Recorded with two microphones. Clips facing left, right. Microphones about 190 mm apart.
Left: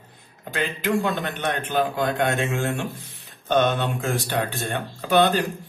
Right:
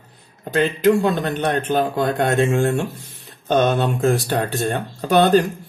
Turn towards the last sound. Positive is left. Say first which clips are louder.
# right 5 dB
turn(degrees=-40)  # may be behind; listen again after turning